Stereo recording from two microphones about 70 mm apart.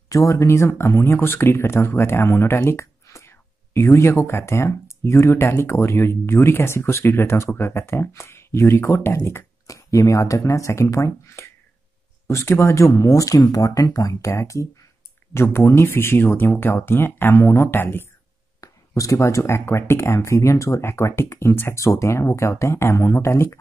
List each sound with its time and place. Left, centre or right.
0.1 s speech: left
18.6 s speech: left
21.3 s speech: left